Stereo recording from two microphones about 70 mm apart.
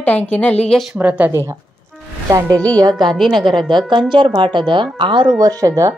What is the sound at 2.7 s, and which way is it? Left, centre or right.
A woman's voice, right.